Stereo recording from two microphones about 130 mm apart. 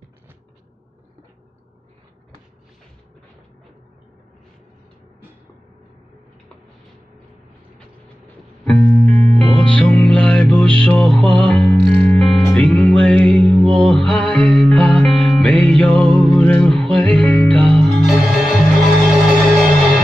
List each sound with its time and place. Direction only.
8.6 s music: 10° left (ahead or behind)
11.9 s music: 20° left (ahead or behind)
12.2 s music: 5° left (ahead or behind)